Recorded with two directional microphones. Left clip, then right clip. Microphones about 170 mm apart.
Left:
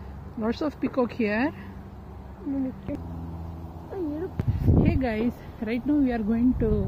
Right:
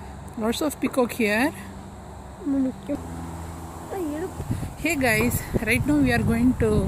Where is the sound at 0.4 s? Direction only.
10° right (ahead or behind).